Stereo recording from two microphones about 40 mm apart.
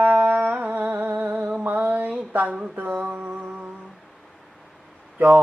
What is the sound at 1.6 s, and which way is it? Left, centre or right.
Mantra, right.